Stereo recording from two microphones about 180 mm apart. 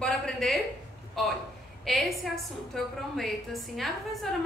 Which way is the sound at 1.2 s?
Centre (ahead or behind).